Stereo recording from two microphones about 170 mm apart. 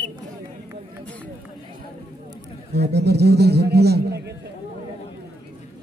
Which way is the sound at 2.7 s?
75° right (ahead or behind).